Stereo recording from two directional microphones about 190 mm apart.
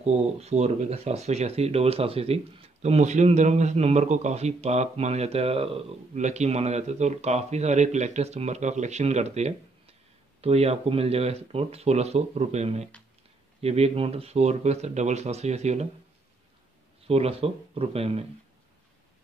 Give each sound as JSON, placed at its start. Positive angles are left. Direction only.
{"t": 0.0, "sound": "speech", "side_deg": -35}
{"t": 17.1, "sound": "speech", "side_deg": -30}